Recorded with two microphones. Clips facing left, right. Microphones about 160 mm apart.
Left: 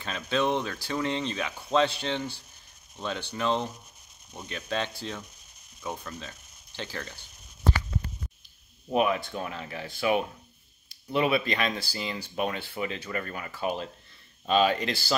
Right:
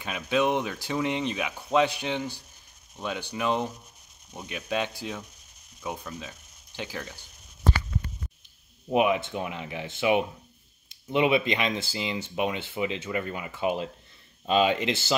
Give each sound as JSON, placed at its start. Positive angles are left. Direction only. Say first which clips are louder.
{"t": 0.0, "sound": "speech", "louder": "right 2 dB", "side_deg": -10}
{"t": 8.9, "sound": "speech", "louder": "right 2 dB", "side_deg": -15}